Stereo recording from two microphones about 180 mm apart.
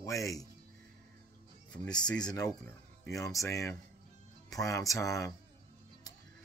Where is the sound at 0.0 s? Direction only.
15° left (ahead or behind).